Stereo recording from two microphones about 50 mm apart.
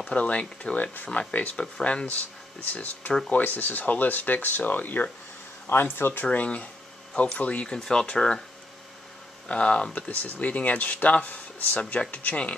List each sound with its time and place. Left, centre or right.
0.1 s speech: left
1.6 s speech: left
2.6 s speech: left
6.3 s speech: left
9.5 s speech: left
9.9 s speech: left